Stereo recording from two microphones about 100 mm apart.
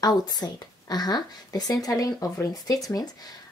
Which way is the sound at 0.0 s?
40° left (ahead or behind).